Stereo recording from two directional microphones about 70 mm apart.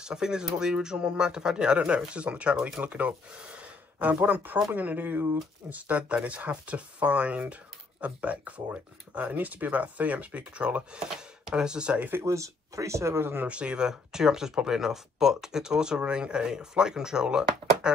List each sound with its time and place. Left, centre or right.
0.0 s speech: centre
12.3 s speech: right
13.5 s speech: centre